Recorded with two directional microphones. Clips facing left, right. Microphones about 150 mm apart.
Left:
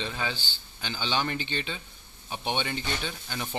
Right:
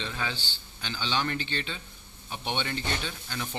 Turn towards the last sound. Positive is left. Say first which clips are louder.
# left 1 dB
turn(degrees=10)  # may be behind; listen again after turning